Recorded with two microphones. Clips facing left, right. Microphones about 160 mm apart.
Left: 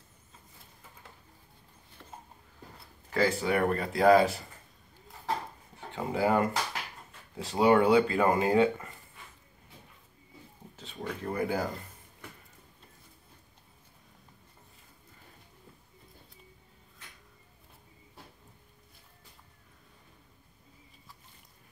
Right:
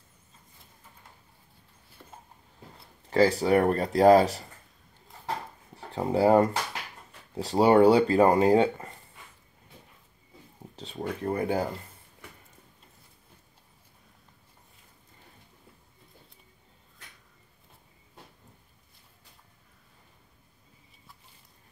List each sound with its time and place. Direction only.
2.0 s a sound: 10° right (ahead or behind)
3.1 s speech: 35° right (ahead or behind)
5.8 s speech: 35° right (ahead or behind)
10.8 s speech: 35° right (ahead or behind)